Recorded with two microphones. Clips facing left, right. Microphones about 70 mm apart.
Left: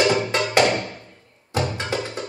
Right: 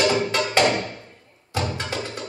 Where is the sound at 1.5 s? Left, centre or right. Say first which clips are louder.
Left 2 dB; left.